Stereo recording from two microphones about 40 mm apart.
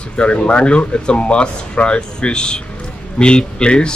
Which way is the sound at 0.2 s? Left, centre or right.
Left.